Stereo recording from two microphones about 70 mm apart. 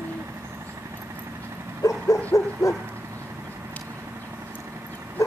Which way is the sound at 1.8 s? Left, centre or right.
Left.